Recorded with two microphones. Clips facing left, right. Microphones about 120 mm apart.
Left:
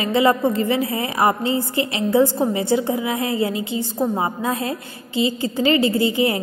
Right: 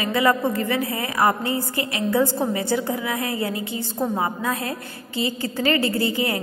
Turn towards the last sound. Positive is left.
turn(degrees=20)  # may be behind; listen again after turning